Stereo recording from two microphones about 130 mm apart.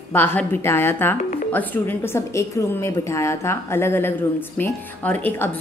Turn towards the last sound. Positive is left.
turn(degrees=15)  # may be behind; listen again after turning